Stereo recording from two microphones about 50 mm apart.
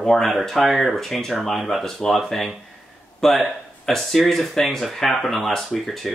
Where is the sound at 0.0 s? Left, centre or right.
Centre.